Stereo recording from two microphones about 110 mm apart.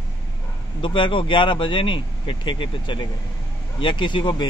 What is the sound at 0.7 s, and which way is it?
Speech, 50° left (ahead or behind).